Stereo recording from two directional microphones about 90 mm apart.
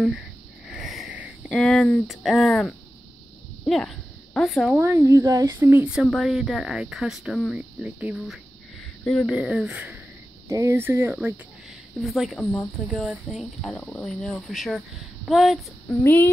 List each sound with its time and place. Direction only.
0.7 s a sound: 5° right (ahead or behind)
1.5 s speech: 5° left (ahead or behind)
4.7 s speech: 30° right (ahead or behind)
5.2 s speech: 40° right (ahead or behind)
5.6 s speech: 20° right (ahead or behind); by 7.5 s centre (ahead or behind)
7.5 s speech: 15° right (ahead or behind)
9.2 s speech: 10° right (ahead or behind)
10.5 s speech: 30° right (ahead or behind)
12.0 s speech: centre (ahead or behind)
13.8 s speech: 15° left (ahead or behind)
14.2 s speech: 5° left (ahead or behind)
15.9 s speech: 25° left (ahead or behind)